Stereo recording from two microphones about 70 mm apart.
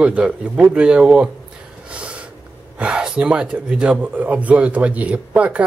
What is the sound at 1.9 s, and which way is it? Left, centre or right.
Snort, centre.